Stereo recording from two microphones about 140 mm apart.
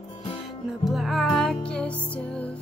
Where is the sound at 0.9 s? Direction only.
Centre (ahead or behind).